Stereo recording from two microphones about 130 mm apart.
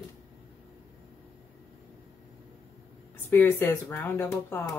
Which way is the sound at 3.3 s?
15° left (ahead or behind).